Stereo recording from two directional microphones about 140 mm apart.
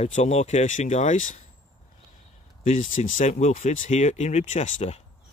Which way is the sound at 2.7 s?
65° left (ahead or behind).